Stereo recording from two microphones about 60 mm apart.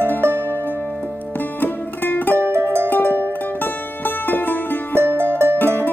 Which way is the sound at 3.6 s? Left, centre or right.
Left.